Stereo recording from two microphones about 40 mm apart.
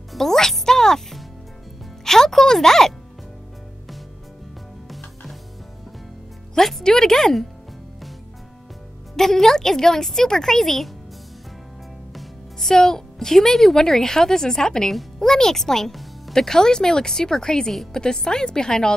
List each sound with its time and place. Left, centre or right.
0.1 s music: centre
6.8 s a sound: centre
9.1 s speech: centre
12.5 s speech: centre
15.9 s music: centre
16.3 s speech: centre